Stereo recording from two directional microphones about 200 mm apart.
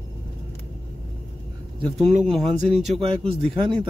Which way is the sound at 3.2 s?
25° right (ahead or behind).